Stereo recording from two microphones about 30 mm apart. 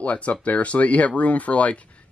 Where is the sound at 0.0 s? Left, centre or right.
Left.